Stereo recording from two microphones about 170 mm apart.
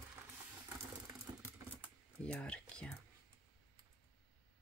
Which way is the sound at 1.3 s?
25° right (ahead or behind).